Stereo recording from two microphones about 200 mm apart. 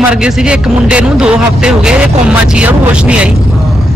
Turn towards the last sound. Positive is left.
turn(degrees=-5)  # may be behind; listen again after turning